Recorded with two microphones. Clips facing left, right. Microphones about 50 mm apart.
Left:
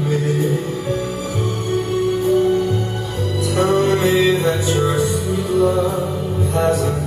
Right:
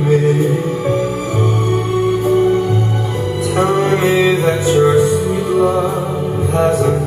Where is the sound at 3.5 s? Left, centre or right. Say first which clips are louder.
Right 2 dB; right.